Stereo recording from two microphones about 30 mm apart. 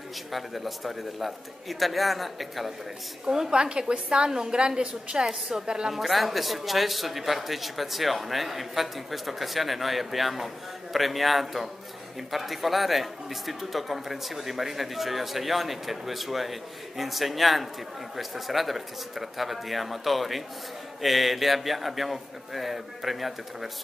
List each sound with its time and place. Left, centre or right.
0.3 s a man's voice: centre
3.3 s a woman's voice: centre
5.9 s a man's voice: centre